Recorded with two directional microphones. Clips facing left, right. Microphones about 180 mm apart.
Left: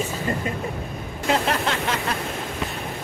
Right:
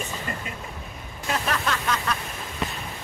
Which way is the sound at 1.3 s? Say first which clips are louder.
Left 4 dB; 25° left (ahead or behind).